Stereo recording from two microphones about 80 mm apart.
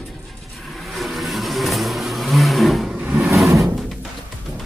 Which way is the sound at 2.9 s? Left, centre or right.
Centre.